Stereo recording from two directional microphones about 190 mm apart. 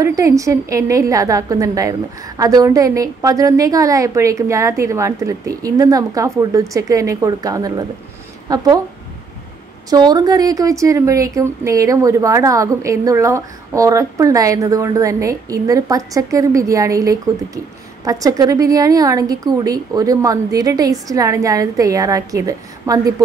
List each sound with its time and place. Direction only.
0.0 s a woman's voice: 15° right (ahead or behind)
9.8 s a woman's voice: 20° right (ahead or behind)